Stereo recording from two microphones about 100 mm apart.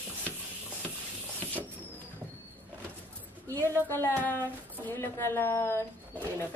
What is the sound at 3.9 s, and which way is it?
Speech, 25° left (ahead or behind).